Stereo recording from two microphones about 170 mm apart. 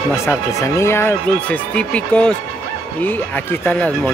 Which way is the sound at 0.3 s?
15° left (ahead or behind).